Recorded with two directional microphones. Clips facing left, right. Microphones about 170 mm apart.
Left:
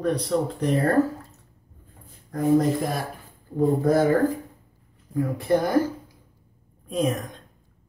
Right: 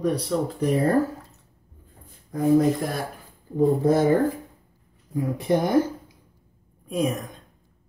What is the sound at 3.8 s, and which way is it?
Speech, 20° right (ahead or behind).